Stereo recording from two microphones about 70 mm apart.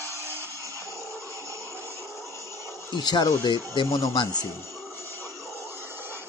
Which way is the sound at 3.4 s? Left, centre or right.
Left.